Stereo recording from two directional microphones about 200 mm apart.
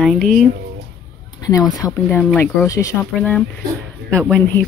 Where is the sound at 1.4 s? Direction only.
20° left (ahead or behind).